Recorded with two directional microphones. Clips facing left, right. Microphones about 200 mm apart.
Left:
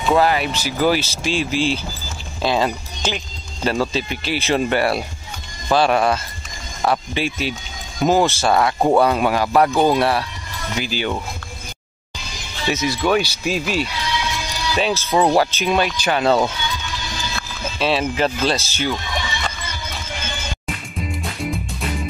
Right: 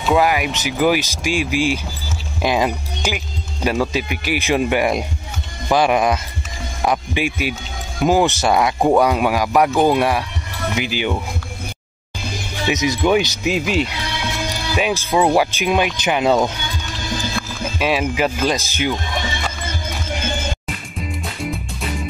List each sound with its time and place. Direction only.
0.2 s speech: 15° right (ahead or behind)
12.5 s speech: 15° right (ahead or behind)
14.0 s music: 55° right (ahead or behind)
14.8 s speech: 15° right (ahead or behind)
16.6 s music: 50° right (ahead or behind)
17.7 s speech: 10° right (ahead or behind)
19.6 s music: 50° right (ahead or behind)
20.6 s music: centre (ahead or behind)